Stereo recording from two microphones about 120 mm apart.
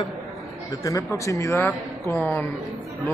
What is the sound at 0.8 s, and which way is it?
Speech, 25° left (ahead or behind).